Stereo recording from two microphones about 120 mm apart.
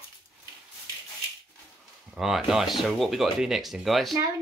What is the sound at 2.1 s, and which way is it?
Speech, centre (ahead or behind).